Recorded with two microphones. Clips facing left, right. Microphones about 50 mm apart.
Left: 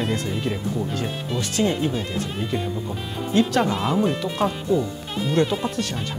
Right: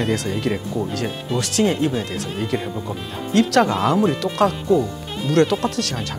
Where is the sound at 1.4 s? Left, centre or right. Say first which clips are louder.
Right 3 dB; right.